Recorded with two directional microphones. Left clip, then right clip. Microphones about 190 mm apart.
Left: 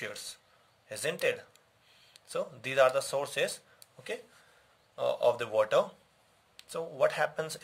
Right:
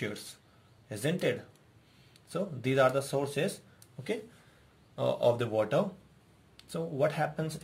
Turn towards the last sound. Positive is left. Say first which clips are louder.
# left 2 dB
turn(degrees=35)  # may be behind; listen again after turning